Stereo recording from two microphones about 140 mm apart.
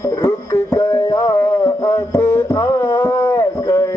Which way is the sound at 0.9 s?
20° left (ahead or behind).